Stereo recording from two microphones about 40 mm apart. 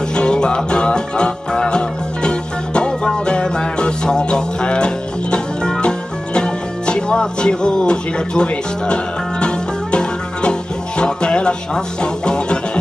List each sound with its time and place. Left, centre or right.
0.1 s music: left